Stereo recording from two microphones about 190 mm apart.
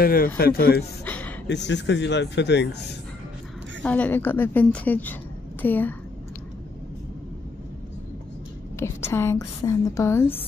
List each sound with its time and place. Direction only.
0.0 s a man's voice: 50° left (ahead or behind)
1.0 s a sound: 10° left (ahead or behind)
1.5 s speech: 65° left (ahead or behind)
3.8 s a woman's voice: 10° left (ahead or behind)
8.7 s a woman's voice: 15° left (ahead or behind)